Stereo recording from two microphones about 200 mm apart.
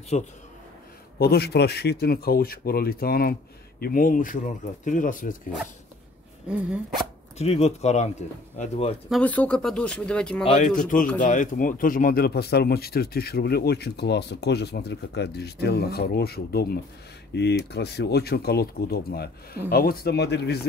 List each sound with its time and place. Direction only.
0.1 s speech: 35° left (ahead or behind)
1.1 s speech: 55° left (ahead or behind)
6.4 s speech: 5° right (ahead or behind)
7.3 s speech: 30° left (ahead or behind)
9.1 s speech: 5° left (ahead or behind)
10.4 s speech: 30° left (ahead or behind)
11.1 s speech: 40° left (ahead or behind)